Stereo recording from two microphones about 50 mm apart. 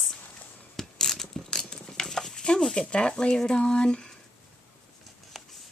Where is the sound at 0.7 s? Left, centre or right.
Centre.